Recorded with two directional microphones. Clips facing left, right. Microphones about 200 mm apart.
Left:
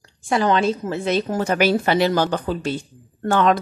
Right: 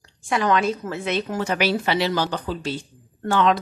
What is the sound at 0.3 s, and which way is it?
Speech, 30° left (ahead or behind).